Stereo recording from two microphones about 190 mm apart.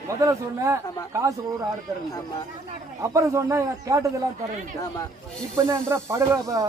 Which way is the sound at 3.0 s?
15° right (ahead or behind).